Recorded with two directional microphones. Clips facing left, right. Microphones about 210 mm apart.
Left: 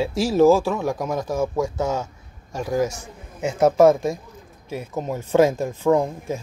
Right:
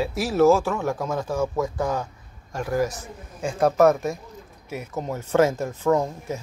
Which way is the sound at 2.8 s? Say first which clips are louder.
Left 2 dB; 20° left (ahead or behind).